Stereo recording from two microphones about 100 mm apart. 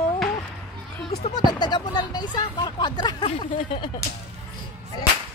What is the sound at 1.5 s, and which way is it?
Speech, 45° left (ahead or behind).